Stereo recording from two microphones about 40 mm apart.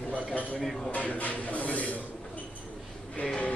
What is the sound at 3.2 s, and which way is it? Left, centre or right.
Speech, left.